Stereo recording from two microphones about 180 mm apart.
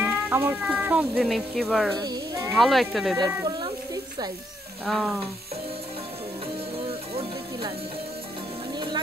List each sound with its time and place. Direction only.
0.0 s speech: 10° right (ahead or behind)
2.0 s speech: 20° right (ahead or behind)
2.5 s speech: centre (ahead or behind)
3.3 s a sound: 25° right (ahead or behind)
4.8 s speech: centre (ahead or behind)